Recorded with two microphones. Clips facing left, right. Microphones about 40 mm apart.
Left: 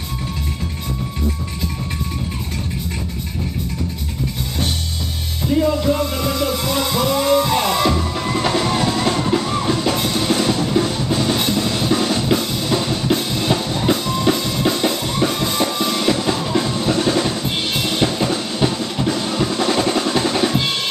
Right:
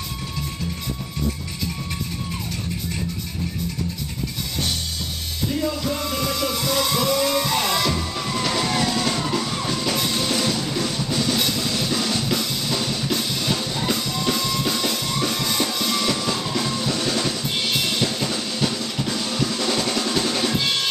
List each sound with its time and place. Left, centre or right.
5.6 s music: left